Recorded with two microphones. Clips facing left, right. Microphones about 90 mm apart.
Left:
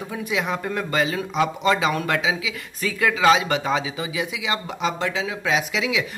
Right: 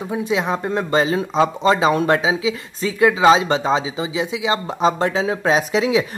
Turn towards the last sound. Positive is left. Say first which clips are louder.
# right 6 dB
turn(degrees=-35)  # may be behind; listen again after turning